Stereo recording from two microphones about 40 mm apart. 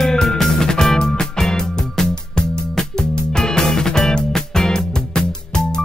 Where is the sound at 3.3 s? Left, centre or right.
Centre.